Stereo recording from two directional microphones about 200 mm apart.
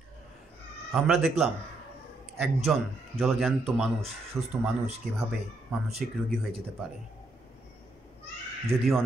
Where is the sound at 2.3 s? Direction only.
Centre (ahead or behind).